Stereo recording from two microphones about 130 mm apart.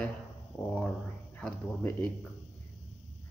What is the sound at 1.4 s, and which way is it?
Speech, 10° left (ahead or behind).